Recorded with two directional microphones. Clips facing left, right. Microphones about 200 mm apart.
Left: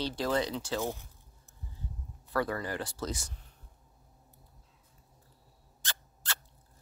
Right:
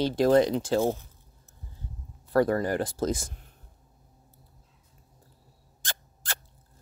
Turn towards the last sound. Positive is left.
turn(degrees=-50)  # may be behind; listen again after turning